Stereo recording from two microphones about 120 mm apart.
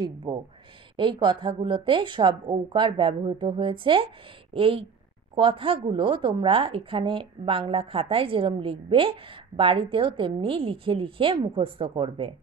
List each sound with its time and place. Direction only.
0.0 s a woman's voice: 40° right (ahead or behind)